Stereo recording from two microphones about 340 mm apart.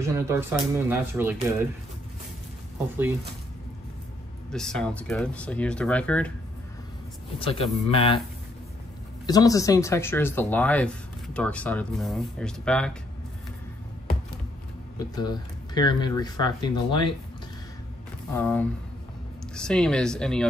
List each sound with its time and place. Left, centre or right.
0.0 s speech: centre
4.5 s speech: centre
7.3 s speech: centre
9.2 s speech: centre
15.0 s speech: centre
18.3 s speech: centre